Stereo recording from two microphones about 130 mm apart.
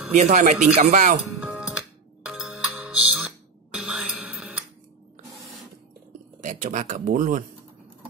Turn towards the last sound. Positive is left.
turn(degrees=-90)